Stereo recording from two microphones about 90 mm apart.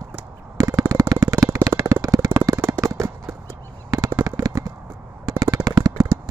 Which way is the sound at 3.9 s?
40° right (ahead or behind).